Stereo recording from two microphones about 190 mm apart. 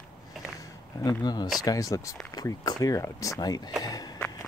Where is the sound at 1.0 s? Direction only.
20° left (ahead or behind).